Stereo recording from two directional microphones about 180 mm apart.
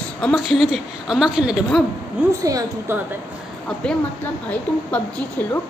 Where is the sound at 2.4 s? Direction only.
20° right (ahead or behind).